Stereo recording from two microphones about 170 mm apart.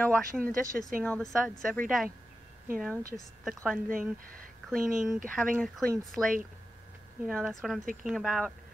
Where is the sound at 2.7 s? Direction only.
Centre (ahead or behind).